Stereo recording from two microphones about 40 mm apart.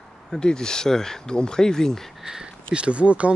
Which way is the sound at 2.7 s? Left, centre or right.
Right.